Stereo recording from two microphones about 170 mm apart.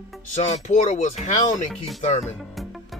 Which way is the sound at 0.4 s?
45° left (ahead or behind).